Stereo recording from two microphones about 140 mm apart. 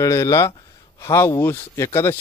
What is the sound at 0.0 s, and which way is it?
A man's voice, 25° left (ahead or behind).